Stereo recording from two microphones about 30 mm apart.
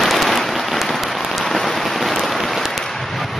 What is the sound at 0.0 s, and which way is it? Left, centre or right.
Rain, centre.